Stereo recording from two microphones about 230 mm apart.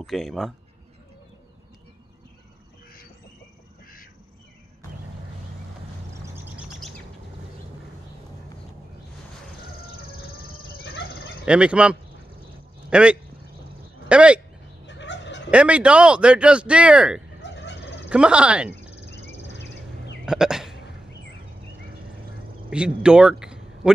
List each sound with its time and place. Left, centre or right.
0.0 s speech: centre
6.3 s bird: centre
11.4 s speech: centre
14.9 s fowl: left
15.5 s speech: centre
17.4 s a sound: left
18.1 s speech: centre
20.2 s hiccup: centre
22.7 s speech: centre
23.4 s a sound: centre